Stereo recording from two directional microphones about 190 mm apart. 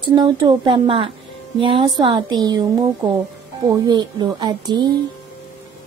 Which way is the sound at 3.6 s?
20° right (ahead or behind).